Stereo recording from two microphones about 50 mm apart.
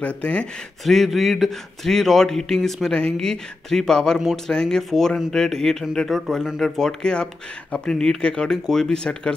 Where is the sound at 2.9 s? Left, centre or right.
Centre.